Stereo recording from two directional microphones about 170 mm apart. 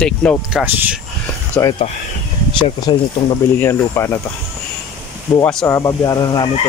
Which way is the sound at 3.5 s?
15° left (ahead or behind).